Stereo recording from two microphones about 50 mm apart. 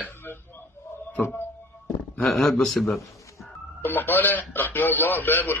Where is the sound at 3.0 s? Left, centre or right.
Left.